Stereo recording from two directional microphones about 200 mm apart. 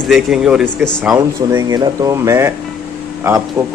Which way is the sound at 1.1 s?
15° right (ahead or behind).